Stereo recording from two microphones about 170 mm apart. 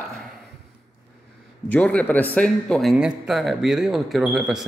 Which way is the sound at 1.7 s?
10° left (ahead or behind).